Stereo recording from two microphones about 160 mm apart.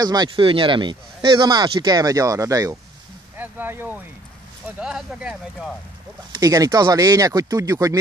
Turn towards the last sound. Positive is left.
turn(degrees=-20)  # may be behind; listen again after turning